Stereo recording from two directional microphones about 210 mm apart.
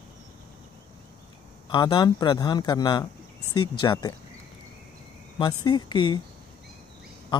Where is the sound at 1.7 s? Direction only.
20° left (ahead or behind).